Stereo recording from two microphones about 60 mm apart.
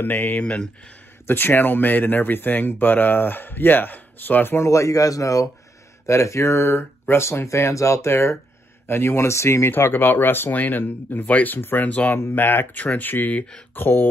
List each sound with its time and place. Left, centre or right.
0.0 s speech: left
0.4 s speech: left
1.2 s speech: left
4.6 s speech: left
6.0 s speech: left
9.7 s speech: left
12.2 s speech: left
13.7 s speech: left